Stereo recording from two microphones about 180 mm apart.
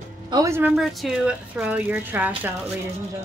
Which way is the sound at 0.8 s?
Centre (ahead or behind).